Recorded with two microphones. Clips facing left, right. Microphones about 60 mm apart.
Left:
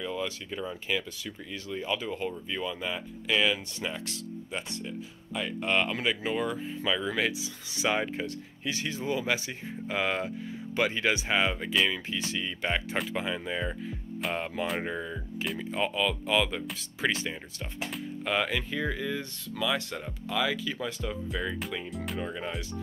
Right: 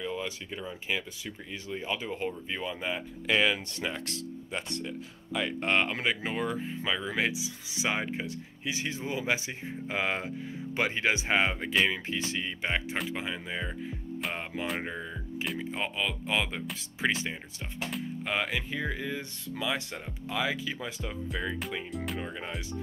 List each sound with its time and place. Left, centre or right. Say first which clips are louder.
0.0 s speech: left 1 dB; centre
3.3 s speech: right 1 dB; right
5.6 s speech: left 1 dB; right
13.1 s speech: left 3 dB; centre
14.7 s speech: left 2 dB; centre
15.7 s speech: left 8 dB; right
21.3 s speech: right 2 dB; centre